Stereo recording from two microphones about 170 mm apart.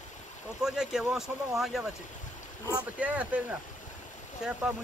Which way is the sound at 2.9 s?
10° right (ahead or behind).